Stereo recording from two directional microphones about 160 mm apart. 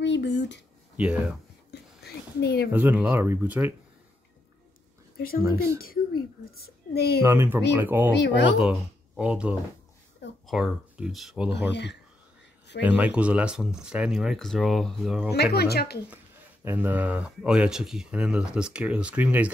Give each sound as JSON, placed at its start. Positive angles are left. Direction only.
{"t": 0.0, "sound": "speech", "side_deg": 90}
{"t": 0.9, "sound": "speech", "side_deg": -10}
{"t": 1.7, "sound": "a sound", "side_deg": 85}
{"t": 2.7, "sound": "speech", "side_deg": -10}
{"t": 5.4, "sound": "speech", "side_deg": -20}
{"t": 5.8, "sound": "a child's voice", "side_deg": 65}
{"t": 7.2, "sound": "speech", "side_deg": -15}
{"t": 11.7, "sound": "speech", "side_deg": 90}
{"t": 12.8, "sound": "speech", "side_deg": -10}
{"t": 15.3, "sound": "speech", "side_deg": 85}
{"t": 16.6, "sound": "speech", "side_deg": -10}